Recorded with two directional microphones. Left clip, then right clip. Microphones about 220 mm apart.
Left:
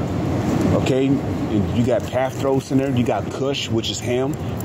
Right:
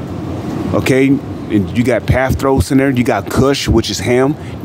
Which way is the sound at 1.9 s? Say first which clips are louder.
Right 6 dB; 35° right (ahead or behind).